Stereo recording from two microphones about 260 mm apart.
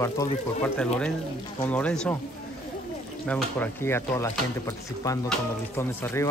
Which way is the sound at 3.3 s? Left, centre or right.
Centre.